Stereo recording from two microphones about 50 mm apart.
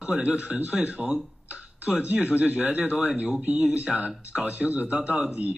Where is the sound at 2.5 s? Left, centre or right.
Right.